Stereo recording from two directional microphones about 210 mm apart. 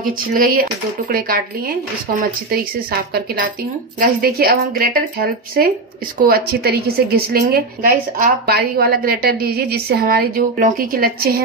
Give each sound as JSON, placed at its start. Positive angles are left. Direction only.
{"t": 0.0, "sound": "speech", "side_deg": -40}
{"t": 2.1, "sound": "a woman's voice", "side_deg": -40}